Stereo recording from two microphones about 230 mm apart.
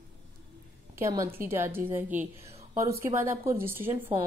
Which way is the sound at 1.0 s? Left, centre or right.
Centre.